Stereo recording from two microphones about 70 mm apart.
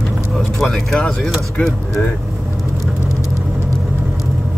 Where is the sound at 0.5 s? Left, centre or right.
Centre.